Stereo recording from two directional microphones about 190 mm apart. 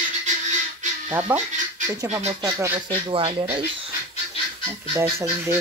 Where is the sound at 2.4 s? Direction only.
25° right (ahead or behind).